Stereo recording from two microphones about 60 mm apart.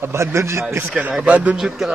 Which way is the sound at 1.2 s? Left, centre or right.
Right.